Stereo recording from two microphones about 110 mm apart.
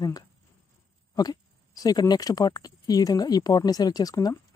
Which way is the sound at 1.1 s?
35° left (ahead or behind).